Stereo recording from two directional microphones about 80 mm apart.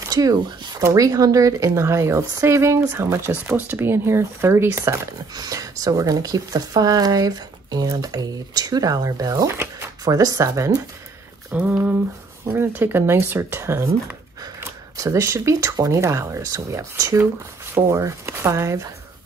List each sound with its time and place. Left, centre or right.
0.1 s speech: right
5.3 s speech: right
11.5 s speech: centre
15.0 s speech: right